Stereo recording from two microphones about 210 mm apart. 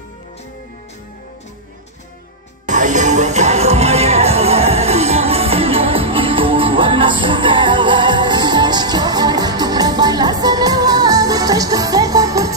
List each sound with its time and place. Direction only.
2.7 s music: 35° right (ahead or behind); by 12.5 s 15° right (ahead or behind)